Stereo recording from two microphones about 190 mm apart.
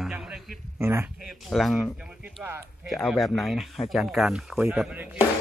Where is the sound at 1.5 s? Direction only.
Centre (ahead or behind).